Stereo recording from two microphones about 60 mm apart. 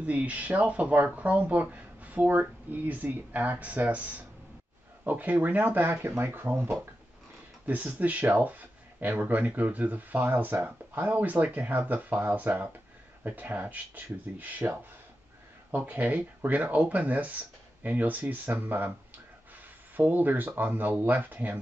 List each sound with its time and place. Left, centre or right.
0.0 s speech: right
7.6 s speech: right
15.7 s speech: right
20.0 s speech: right